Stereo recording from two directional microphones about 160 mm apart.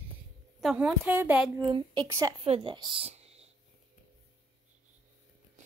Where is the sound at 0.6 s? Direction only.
5° right (ahead or behind).